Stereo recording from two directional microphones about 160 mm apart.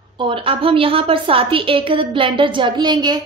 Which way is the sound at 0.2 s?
35° right (ahead or behind).